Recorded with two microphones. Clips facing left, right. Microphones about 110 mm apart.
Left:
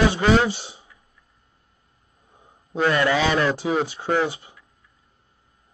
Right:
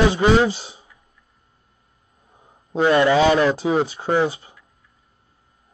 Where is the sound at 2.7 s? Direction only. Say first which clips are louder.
Right 5 dB; 20° right (ahead or behind).